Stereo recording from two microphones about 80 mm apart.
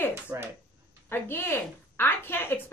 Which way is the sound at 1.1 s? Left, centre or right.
Left.